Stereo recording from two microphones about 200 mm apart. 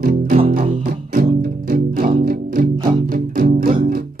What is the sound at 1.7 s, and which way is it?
Music, 40° right (ahead or behind).